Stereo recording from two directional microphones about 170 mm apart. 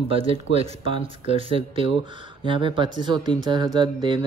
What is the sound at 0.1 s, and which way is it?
Speech, 35° right (ahead or behind).